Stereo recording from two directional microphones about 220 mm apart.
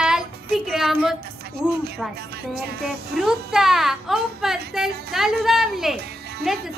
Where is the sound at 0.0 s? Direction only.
Centre (ahead or behind).